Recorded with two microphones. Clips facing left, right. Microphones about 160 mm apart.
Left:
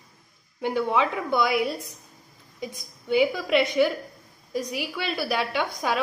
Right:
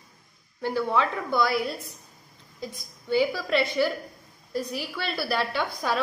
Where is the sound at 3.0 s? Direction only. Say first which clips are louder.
Left 2 dB; 15° left (ahead or behind).